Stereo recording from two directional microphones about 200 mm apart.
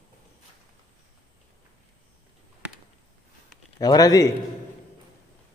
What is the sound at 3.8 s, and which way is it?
Speech, 20° left (ahead or behind).